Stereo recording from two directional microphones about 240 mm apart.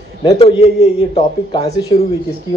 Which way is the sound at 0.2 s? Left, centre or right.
Left.